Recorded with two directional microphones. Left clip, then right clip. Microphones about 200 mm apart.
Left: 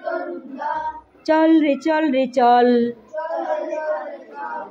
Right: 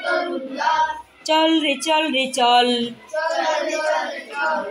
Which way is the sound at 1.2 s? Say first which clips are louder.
Left 2 dB; 25° left (ahead or behind).